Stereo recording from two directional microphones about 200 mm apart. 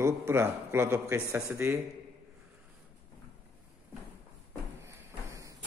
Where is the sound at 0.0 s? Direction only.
15° right (ahead or behind).